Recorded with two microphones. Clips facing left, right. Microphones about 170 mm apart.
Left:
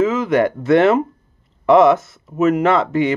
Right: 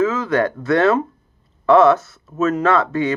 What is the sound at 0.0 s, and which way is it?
Speech, 20° left (ahead or behind).